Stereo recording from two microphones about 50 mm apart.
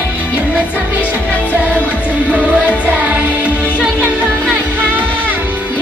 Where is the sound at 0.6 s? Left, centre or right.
Right.